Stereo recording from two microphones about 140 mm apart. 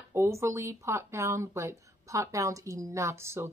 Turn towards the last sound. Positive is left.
turn(degrees=-20)  # may be behind; listen again after turning